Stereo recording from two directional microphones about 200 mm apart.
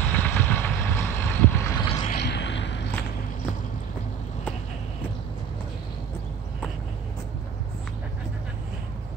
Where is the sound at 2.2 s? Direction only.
60° left (ahead or behind).